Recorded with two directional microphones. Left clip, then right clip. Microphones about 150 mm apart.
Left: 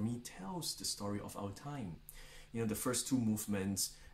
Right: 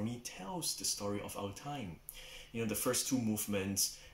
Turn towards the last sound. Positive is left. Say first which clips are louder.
# right 3 dB
turn(degrees=20)  # may be behind; listen again after turning